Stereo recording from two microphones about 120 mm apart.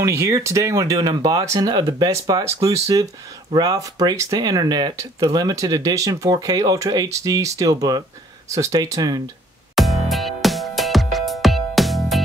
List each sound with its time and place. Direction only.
0.0 s speech: 25° right (ahead or behind)
1.8 s speech: 35° right (ahead or behind)
9.8 s music: centre (ahead or behind)